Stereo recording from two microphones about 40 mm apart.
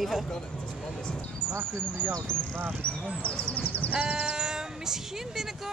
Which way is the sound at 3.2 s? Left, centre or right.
Left.